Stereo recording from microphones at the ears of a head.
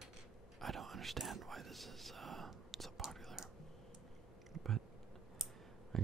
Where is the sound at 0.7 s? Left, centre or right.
Right.